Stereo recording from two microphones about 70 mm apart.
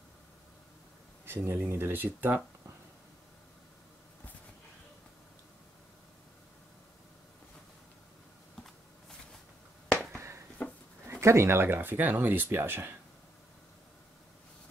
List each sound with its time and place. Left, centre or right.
1.2 s speech: right
10.1 s finger snapping: right
11.1 s speech: right